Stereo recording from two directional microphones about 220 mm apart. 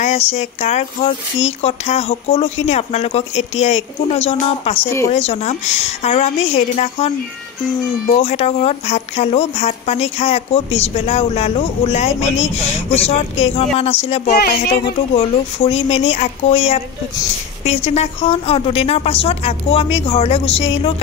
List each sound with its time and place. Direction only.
0.0 s speech: 30° left (ahead or behind)